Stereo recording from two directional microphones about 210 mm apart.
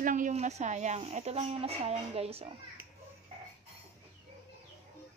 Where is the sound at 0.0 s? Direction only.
40° right (ahead or behind).